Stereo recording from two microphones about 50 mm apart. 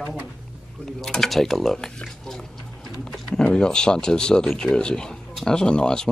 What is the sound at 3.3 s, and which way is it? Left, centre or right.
Speech, centre.